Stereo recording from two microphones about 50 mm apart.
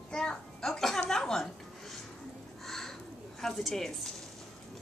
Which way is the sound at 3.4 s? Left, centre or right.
Centre.